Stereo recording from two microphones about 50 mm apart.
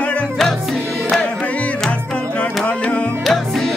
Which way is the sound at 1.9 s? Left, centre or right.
Left.